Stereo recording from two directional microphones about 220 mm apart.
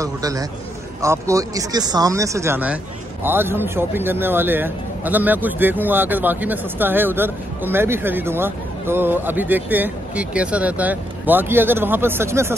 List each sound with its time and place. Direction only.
0.0 s a man's voice: 15° right (ahead or behind)